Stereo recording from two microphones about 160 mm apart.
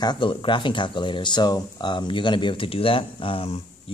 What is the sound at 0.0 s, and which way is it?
Speech, 30° left (ahead or behind).